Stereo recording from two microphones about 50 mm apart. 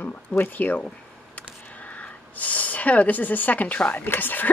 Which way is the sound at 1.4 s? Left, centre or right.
Left.